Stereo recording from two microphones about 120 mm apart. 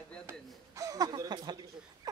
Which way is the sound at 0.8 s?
30° right (ahead or behind).